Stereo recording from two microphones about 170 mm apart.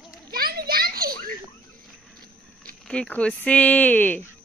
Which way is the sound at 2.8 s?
5° left (ahead or behind).